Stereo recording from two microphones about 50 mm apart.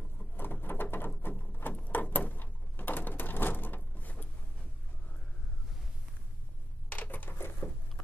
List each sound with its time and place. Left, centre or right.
0.2 s pigeon: left
1.5 s a sound: left
6.9 s coin: left